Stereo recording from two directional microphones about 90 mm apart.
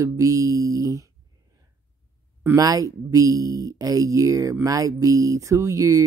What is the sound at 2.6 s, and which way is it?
Speech, 40° right (ahead or behind).